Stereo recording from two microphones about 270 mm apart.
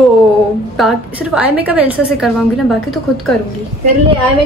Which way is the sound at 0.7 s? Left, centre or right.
Centre.